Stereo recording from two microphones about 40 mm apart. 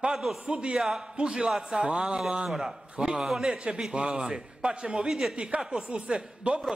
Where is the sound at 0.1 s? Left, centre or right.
Centre.